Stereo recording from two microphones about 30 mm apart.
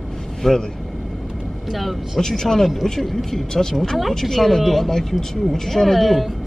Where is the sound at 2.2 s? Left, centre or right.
Centre.